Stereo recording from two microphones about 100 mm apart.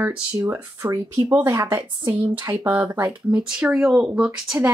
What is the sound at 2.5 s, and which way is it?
Speech, 15° right (ahead or behind).